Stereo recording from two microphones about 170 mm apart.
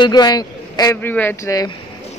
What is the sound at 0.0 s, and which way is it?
A man's voice, 25° left (ahead or behind).